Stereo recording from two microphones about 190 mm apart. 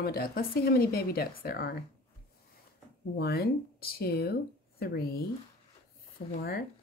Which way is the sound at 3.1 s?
55° left (ahead or behind).